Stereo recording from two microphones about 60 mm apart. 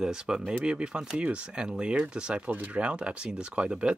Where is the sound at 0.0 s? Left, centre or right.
Centre.